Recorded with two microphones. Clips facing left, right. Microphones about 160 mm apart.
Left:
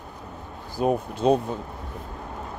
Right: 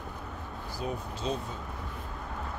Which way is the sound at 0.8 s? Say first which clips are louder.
Left 13 dB; 60° left (ahead or behind).